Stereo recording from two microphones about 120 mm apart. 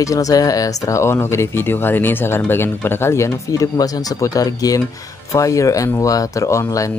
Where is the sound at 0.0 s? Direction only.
30° left (ahead or behind).